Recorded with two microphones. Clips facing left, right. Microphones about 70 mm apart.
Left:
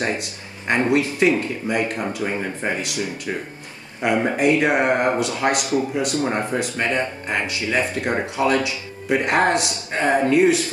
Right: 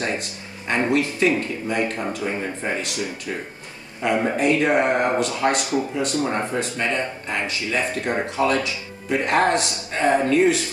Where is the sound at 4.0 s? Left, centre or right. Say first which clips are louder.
Left 1 dB; centre.